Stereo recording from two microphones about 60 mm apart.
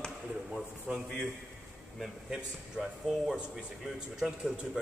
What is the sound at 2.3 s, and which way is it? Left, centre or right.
Speech, centre.